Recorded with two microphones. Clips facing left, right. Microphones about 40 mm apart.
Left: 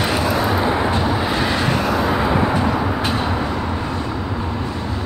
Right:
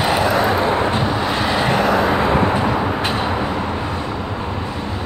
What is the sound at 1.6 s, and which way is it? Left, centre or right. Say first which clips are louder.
Vehicle: right 3 dB; right.